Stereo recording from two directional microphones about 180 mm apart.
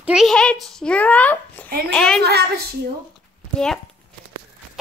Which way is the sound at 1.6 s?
55° right (ahead or behind).